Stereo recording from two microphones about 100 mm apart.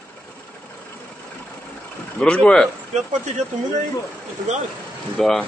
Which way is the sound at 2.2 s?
10° left (ahead or behind).